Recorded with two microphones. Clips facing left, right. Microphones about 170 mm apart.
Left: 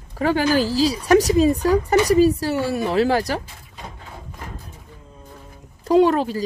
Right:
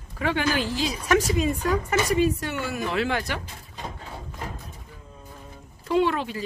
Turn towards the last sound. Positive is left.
turn(degrees=40)  # may be behind; listen again after turning